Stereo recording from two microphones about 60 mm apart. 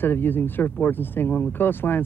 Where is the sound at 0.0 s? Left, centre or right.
Left.